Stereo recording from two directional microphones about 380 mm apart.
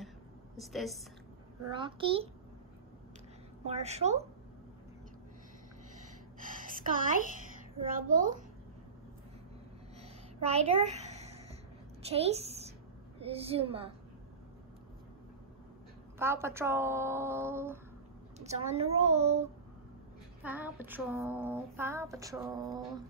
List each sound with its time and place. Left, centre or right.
0.6 s a woman's voice: centre
1.8 s female singing: centre
3.6 s female singing: centre
6.4 s a woman's voice: right
10.4 s a sound: centre
12.1 s a woman's voice: centre
13.2 s female singing: centre
16.2 s female singing: centre
18.4 s female singing: centre
20.4 s female singing: centre